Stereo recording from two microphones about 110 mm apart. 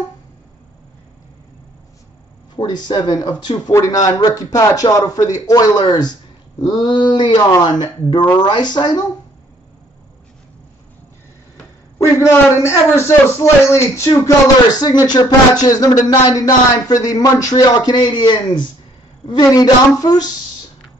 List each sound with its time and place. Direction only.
2.5 s a man's voice: 40° left (ahead or behind)
6.6 s a sound: 35° left (ahead or behind)
7.6 s a man's voice: 40° left (ahead or behind)
12.0 s a man's voice: 25° left (ahead or behind)